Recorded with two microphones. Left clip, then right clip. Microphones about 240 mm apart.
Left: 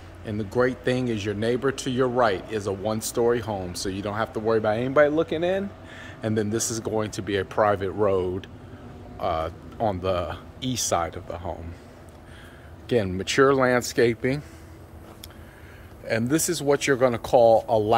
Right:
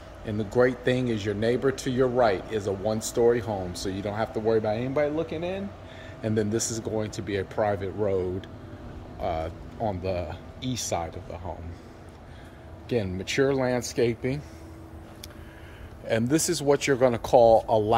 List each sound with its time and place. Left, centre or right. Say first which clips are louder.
0.2 s speech: right 1 dB; centre
12.8 s speech: left 4 dB; centre
16.1 s speech: left 1 dB; centre